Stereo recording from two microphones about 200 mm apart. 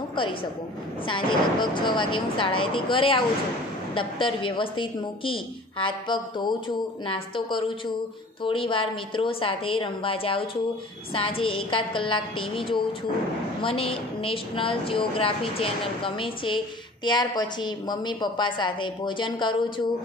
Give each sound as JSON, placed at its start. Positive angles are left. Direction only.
{"t": 1.0, "sound": "a woman's voice", "side_deg": 25}